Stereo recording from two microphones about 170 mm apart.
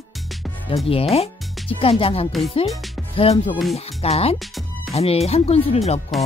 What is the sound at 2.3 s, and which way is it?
Speech, centre (ahead or behind).